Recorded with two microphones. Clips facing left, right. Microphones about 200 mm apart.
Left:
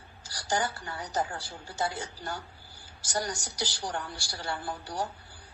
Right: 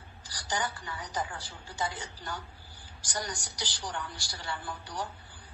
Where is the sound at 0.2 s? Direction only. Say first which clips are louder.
Left 4 dB; 45° left (ahead or behind).